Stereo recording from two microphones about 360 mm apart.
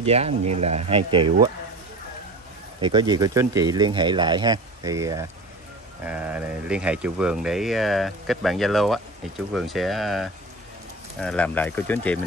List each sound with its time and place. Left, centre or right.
0.0 s speech: centre
2.8 s speech: centre